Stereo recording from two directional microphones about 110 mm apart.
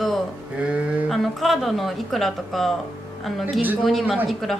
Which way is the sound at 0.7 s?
Centre (ahead or behind).